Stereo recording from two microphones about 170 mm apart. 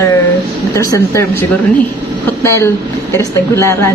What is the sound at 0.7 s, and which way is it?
Speech, 20° left (ahead or behind).